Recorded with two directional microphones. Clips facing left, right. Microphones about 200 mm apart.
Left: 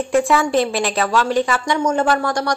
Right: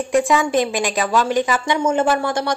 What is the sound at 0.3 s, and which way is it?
A woman's voice, 15° right (ahead or behind).